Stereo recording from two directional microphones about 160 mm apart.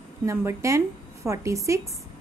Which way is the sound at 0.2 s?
15° right (ahead or behind).